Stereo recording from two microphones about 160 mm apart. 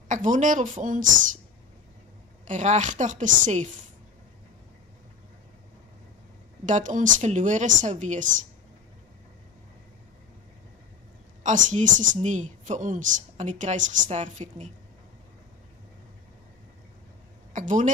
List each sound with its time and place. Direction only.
0.1 s a woman's voice: 50° right (ahead or behind)
2.4 s a woman's voice: 50° right (ahead or behind)
6.6 s a woman's voice: 50° right (ahead or behind)
11.4 s a woman's voice: 50° right (ahead or behind)
17.5 s speech: 50° right (ahead or behind)